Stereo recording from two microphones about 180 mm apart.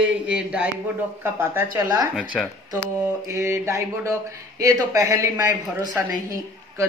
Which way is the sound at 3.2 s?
15° right (ahead or behind).